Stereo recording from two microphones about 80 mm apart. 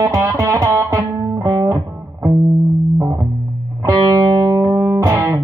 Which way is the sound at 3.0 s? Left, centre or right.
Right.